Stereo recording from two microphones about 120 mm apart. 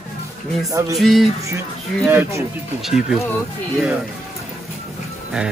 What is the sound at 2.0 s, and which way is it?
Speech, 15° right (ahead or behind).